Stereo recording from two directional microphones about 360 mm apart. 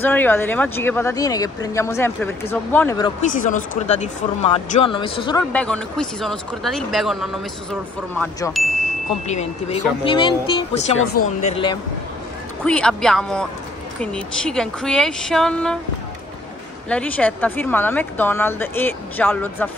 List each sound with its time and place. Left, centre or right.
0.0 s speech: centre
3.2 s speech: left; by 8.6 s centre
9.3 s speech: centre
12.6 s speech: centre
16.9 s speech: centre